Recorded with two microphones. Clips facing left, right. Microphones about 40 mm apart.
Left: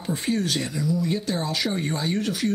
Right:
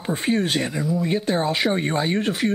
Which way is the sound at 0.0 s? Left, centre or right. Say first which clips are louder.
Right 3 dB; right.